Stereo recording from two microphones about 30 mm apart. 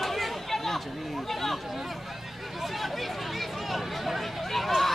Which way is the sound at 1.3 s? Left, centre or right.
Centre.